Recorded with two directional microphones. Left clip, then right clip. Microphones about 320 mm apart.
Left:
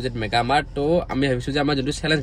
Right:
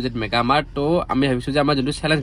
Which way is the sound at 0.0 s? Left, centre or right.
Centre.